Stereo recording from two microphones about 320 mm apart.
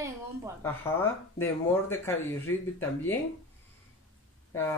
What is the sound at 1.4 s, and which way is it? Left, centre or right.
Speech, centre.